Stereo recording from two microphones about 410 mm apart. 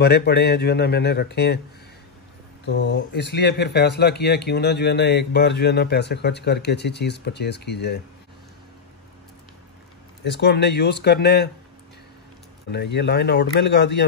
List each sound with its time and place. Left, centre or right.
0.0 s speech: left
2.6 s speech: left
10.4 s speech: left
12.7 s speech: left